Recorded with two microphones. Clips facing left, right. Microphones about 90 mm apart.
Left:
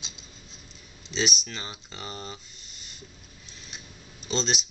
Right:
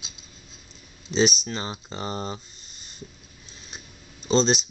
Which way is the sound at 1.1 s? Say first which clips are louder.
Right 7 dB; 30° right (ahead or behind).